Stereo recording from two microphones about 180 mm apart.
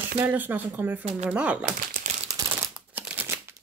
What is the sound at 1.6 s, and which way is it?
Crumpling, 45° right (ahead or behind).